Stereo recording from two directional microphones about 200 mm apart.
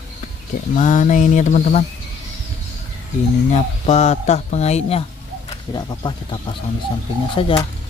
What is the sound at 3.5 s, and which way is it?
Speech, 35° left (ahead or behind).